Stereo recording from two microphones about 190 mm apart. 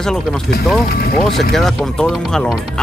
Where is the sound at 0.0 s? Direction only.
Centre (ahead or behind).